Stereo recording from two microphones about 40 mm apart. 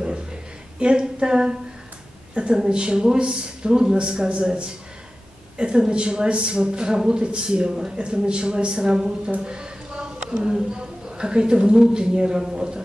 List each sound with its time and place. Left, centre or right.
0.7 s speech: right